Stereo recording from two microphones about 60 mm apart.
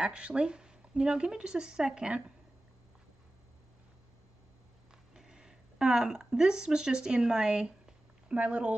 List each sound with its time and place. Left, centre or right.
0.0 s speech: centre
5.1 s speech: centre
8.4 s speech: right